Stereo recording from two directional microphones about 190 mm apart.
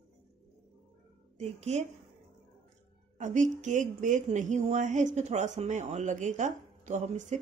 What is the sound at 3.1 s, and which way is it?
A woman's voice, 40° right (ahead or behind).